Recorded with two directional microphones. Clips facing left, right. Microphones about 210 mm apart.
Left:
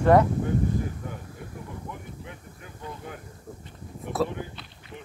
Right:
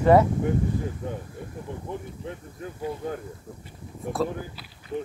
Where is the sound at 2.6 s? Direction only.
35° right (ahead or behind).